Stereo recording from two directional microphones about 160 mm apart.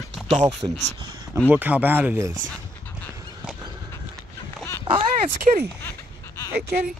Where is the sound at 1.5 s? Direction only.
10° right (ahead or behind).